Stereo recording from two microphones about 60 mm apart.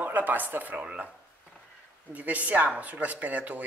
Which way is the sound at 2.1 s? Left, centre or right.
Right.